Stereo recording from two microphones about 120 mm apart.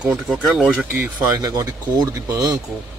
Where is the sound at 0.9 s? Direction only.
20° right (ahead or behind).